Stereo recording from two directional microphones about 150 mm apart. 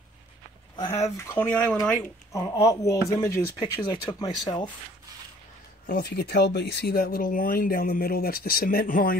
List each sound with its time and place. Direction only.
1.1 s speech: 15° left (ahead or behind)
1.8 s speech: 20° left (ahead or behind)
5.9 s speech: 90° left; by 9.2 s 70° left (ahead or behind)